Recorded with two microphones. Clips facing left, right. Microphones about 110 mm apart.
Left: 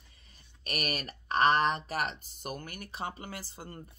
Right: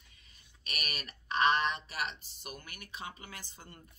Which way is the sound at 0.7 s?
45° left (ahead or behind).